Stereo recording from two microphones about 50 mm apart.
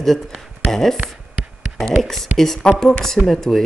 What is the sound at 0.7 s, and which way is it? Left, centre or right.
Speech, centre.